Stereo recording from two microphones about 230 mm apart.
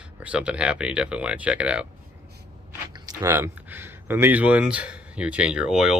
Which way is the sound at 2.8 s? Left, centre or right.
Centre.